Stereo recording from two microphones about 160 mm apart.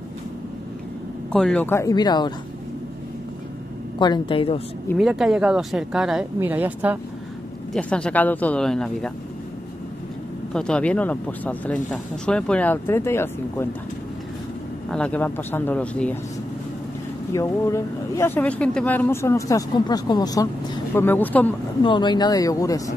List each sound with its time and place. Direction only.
1.3 s speech: 5° left (ahead or behind); by 2.3 s 25° left (ahead or behind)
4.0 s a woman's voice: 30° left (ahead or behind)
4.9 s speech: 5° right (ahead or behind)
7.7 s speech: 5° left (ahead or behind)
10.5 s speech: 5° left (ahead or behind)
14.9 s speech: 5° left (ahead or behind)
17.3 s speech: 20° left (ahead or behind)
21.8 s speech: 30° left (ahead or behind)